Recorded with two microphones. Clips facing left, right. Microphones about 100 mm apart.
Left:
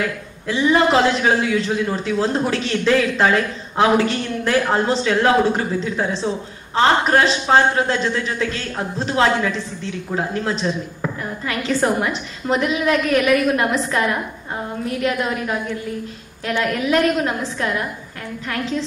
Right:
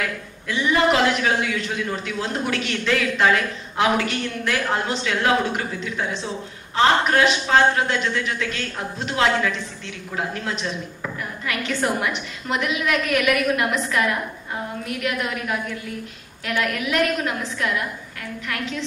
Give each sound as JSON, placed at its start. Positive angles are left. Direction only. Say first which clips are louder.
{"t": 0.0, "sound": "a man's voice", "louder": "left 4 dB", "side_deg": 30}